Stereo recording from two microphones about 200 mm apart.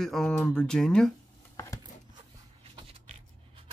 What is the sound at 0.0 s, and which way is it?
Speech, centre (ahead or behind).